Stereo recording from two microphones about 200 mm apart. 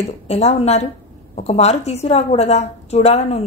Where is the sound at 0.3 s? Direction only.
30° left (ahead or behind).